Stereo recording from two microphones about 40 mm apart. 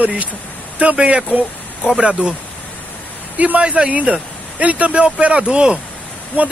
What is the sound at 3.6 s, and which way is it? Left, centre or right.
Speech, right.